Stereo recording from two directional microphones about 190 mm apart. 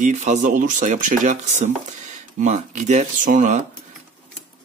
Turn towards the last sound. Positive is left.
turn(degrees=-40)  # may be behind; listen again after turning